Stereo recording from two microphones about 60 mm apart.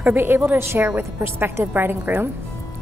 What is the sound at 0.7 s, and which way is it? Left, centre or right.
A woman's voice, right.